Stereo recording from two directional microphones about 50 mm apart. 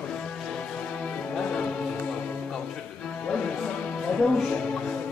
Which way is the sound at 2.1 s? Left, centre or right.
Left.